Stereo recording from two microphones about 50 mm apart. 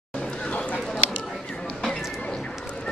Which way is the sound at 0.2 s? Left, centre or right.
Left.